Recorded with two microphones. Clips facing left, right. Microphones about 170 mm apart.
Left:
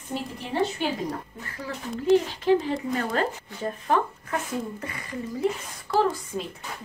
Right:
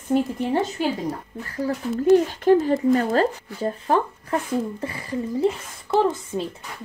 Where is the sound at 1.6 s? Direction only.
45° right (ahead or behind).